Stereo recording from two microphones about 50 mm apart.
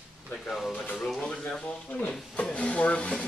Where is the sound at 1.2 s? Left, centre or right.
Centre.